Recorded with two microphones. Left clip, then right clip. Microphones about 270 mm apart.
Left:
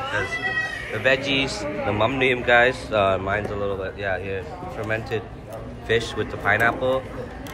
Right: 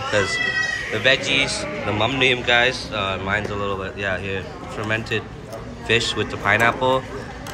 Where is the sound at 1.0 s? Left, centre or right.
Centre.